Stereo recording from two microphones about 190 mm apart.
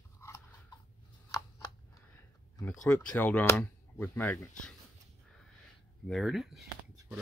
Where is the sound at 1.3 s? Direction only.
15° left (ahead or behind).